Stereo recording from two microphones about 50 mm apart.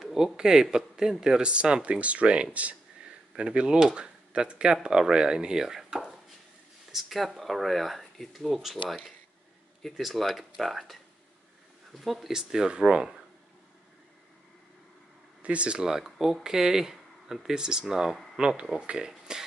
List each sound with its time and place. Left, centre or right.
0.0 s speech: centre
15.4 s speech: right
15.8 s speech: centre